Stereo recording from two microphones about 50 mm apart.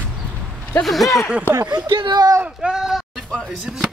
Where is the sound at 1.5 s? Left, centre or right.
Left.